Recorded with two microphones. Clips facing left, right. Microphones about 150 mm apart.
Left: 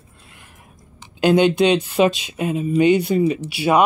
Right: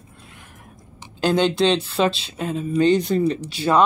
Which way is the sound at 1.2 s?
15° left (ahead or behind).